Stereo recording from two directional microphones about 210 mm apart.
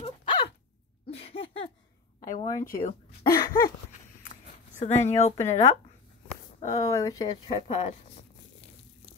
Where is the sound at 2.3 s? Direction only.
15° left (ahead or behind).